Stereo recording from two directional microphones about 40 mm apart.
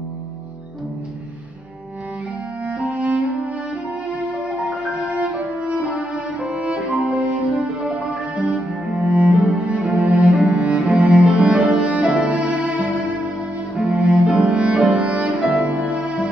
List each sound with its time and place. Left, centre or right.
2.6 s music: right
4.4 s music: right
7.8 s cello: right
9.3 s cello: centre
9.7 s cello: right
11.7 s music: right